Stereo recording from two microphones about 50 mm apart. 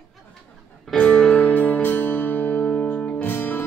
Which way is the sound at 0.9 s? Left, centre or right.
Centre.